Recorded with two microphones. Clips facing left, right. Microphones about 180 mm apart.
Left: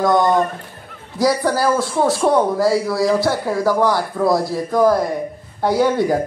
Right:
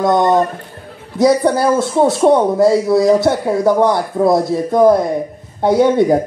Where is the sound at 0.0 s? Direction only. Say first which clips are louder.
Right 3 dB; 25° right (ahead or behind).